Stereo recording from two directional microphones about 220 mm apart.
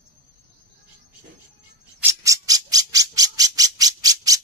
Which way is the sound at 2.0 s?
15° right (ahead or behind).